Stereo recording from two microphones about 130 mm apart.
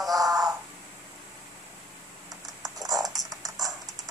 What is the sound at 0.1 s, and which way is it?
Frog, 30° right (ahead or behind).